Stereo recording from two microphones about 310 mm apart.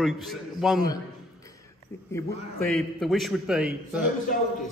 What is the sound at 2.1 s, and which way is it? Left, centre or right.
A man's voice, centre.